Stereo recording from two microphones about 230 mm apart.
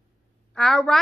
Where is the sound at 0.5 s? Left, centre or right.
Centre.